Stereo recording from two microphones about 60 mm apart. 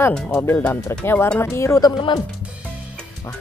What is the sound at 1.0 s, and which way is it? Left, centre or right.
Speech, left.